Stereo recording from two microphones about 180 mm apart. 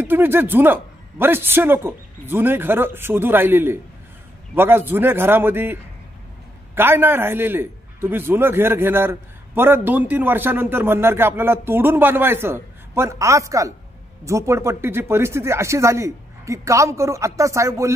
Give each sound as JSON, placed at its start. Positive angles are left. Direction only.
{"t": 0.0, "sound": "a man's voice", "side_deg": -10}